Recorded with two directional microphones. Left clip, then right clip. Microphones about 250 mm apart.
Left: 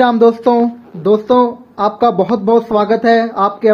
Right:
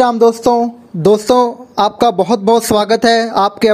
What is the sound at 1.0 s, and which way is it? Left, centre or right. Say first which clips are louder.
Speech: right 1 dB; right.